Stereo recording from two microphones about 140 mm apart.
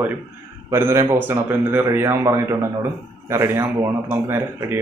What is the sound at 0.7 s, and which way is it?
A man's voice, 20° right (ahead or behind).